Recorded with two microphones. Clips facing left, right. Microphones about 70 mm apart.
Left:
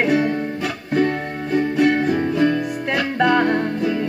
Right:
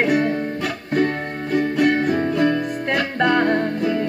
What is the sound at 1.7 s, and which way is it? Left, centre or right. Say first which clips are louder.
Music: left 1 dB; right.